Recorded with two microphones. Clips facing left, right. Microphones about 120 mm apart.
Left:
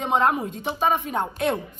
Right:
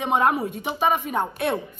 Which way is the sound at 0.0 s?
5° right (ahead or behind).